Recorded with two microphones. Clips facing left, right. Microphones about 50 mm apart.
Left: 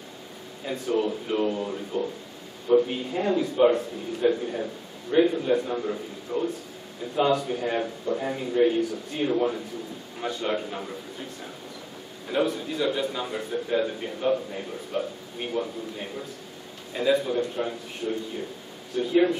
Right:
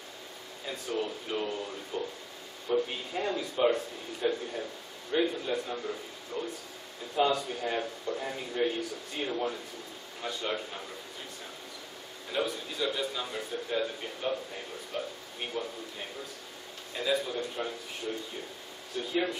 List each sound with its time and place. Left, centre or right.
0.7 s a man's voice: left
12.3 s a man's voice: centre
16.9 s a man's voice: centre
18.9 s a man's voice: centre